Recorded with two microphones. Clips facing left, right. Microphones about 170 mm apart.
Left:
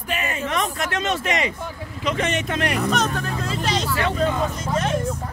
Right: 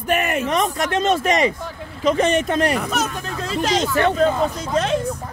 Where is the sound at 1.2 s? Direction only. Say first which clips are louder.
Right 5 dB; 35° right (ahead or behind).